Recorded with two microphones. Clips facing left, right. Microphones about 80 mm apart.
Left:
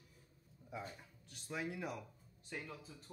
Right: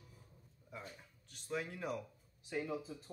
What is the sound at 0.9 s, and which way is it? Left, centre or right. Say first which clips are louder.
Speech: left 1 dB; centre.